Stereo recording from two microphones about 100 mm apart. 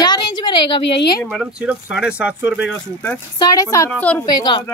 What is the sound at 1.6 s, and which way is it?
Speech, 10° right (ahead or behind).